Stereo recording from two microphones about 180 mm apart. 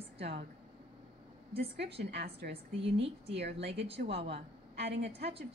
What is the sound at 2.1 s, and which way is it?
A woman's voice, 60° right (ahead or behind).